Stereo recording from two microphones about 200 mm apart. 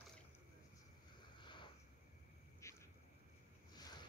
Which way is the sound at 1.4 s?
25° left (ahead or behind).